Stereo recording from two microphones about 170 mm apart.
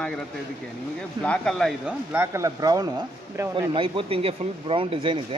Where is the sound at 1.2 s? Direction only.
5° left (ahead or behind).